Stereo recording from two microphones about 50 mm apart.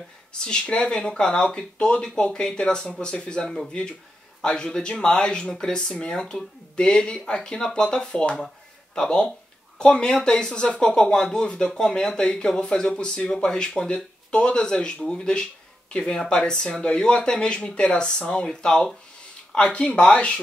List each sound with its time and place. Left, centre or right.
0.3 s speech: centre